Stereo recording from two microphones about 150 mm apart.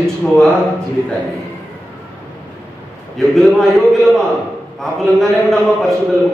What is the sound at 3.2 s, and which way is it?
A man's voice, centre (ahead or behind).